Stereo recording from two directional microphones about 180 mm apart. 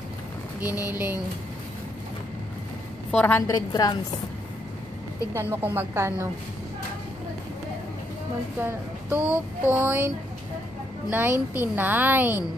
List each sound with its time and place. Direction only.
0.6 s speech: 10° right (ahead or behind)
3.1 s a woman's voice: 10° left (ahead or behind)
5.3 s speech: 15° right (ahead or behind)
8.5 s speech: 10° right (ahead or behind)